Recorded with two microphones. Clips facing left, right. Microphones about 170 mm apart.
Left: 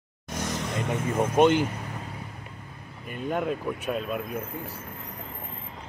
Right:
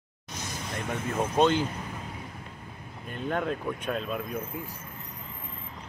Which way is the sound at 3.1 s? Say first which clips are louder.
Left 2 dB; 5° left (ahead or behind).